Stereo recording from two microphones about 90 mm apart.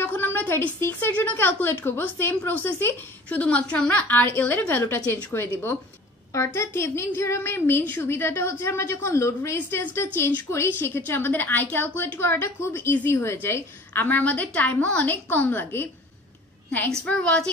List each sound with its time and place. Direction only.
0.0 s a woman's voice: 25° left (ahead or behind)
17.0 s a woman's voice: 10° left (ahead or behind)